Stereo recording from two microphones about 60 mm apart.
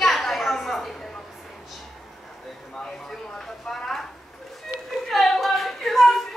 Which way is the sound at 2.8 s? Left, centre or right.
Centre.